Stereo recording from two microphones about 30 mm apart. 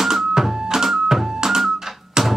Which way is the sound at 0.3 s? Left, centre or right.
Centre.